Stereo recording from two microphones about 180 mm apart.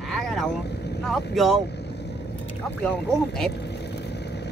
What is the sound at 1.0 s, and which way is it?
Speech, centre (ahead or behind).